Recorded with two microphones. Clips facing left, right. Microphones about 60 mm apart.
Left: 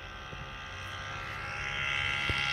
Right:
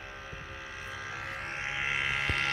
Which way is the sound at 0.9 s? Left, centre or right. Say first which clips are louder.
Right 1 dB; right.